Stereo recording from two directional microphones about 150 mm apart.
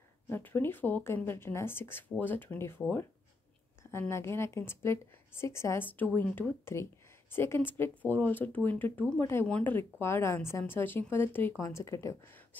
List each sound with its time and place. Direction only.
0.3 s a woman's voice: 15° left (ahead or behind)